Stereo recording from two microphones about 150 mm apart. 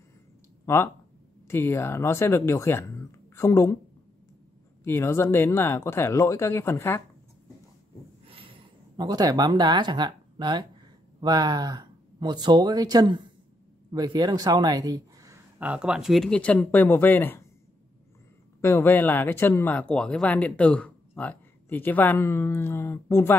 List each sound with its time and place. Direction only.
0.7 s speech: 20° left (ahead or behind)
4.8 s speech: 15° left (ahead or behind)
8.3 s a sound: 35° right (ahead or behind)
11.1 s speech: 25° right (ahead or behind)
15.6 s speech: 5° right (ahead or behind); by 17.5 s 15° left (ahead or behind)
18.6 s speech: 15° left (ahead or behind)